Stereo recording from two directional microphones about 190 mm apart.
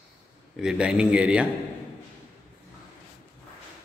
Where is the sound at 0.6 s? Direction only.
5° right (ahead or behind).